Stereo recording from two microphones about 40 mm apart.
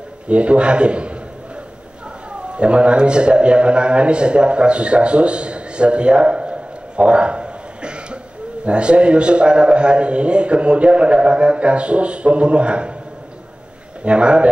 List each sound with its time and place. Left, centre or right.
0.3 s a man's voice: right
2.5 s a man's voice: right
14.0 s a man's voice: right